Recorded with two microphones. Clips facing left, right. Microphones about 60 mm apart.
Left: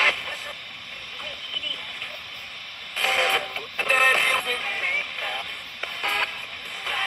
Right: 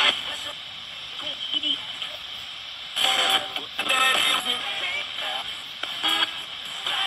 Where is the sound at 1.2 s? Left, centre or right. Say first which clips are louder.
Right 4 dB; left.